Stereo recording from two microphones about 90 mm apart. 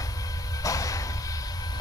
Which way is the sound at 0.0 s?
40° left (ahead or behind).